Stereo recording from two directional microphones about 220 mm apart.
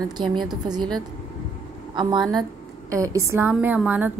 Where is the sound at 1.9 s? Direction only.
20° right (ahead or behind).